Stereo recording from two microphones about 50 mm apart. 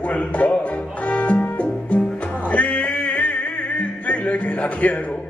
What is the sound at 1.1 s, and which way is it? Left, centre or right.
Music, left.